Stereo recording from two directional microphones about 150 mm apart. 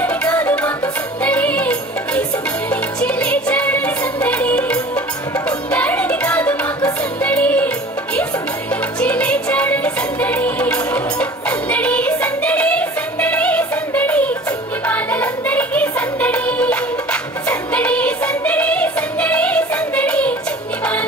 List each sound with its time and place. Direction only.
0.0 s music: 10° left (ahead or behind)
9.0 s music: 10° left (ahead or behind)